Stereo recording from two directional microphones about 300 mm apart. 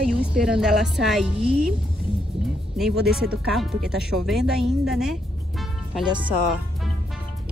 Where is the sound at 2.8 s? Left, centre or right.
Centre.